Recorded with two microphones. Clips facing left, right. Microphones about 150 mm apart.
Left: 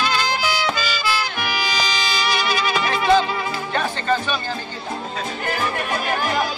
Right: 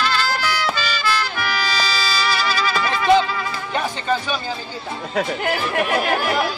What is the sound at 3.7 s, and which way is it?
Music, 10° right (ahead or behind).